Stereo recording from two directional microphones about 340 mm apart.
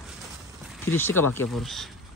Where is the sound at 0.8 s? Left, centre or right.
Centre.